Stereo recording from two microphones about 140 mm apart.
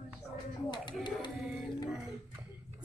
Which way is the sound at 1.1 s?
35° left (ahead or behind).